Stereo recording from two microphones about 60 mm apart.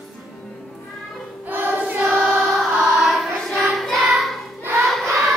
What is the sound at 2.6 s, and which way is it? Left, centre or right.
Child singing, centre.